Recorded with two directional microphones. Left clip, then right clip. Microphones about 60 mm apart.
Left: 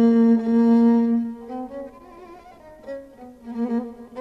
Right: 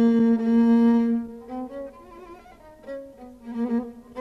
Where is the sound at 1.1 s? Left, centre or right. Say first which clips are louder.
Left 3 dB; centre.